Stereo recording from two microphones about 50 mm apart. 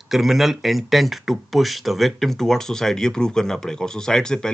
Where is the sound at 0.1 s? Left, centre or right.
Centre.